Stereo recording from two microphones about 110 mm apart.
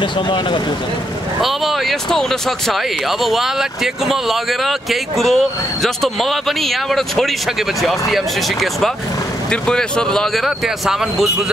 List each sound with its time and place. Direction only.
0.0 s speech: 45° left (ahead or behind)
1.4 s speech: centre (ahead or behind)